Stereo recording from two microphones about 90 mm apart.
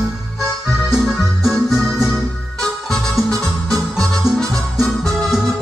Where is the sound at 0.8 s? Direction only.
5° right (ahead or behind).